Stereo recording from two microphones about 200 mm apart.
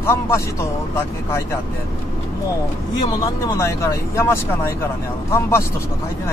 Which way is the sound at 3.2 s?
15° left (ahead or behind).